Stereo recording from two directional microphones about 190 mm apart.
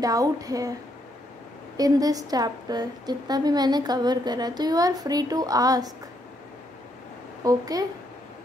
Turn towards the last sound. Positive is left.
turn(degrees=-20)  # may be behind; listen again after turning